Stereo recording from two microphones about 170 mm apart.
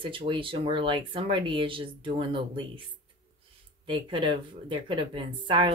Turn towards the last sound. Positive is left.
turn(degrees=-30)  # may be behind; listen again after turning